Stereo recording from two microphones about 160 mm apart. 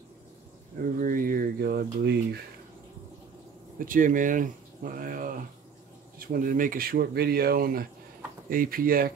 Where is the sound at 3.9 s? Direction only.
55° right (ahead or behind).